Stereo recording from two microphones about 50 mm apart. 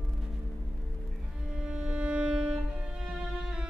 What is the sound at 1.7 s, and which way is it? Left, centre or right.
Music, right.